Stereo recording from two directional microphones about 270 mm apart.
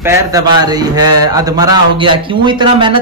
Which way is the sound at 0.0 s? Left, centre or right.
Centre.